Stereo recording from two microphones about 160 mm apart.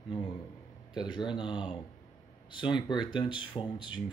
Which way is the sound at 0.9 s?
30° left (ahead or behind).